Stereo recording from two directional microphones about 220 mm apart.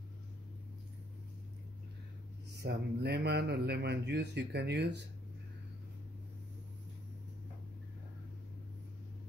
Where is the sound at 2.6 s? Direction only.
50° right (ahead or behind).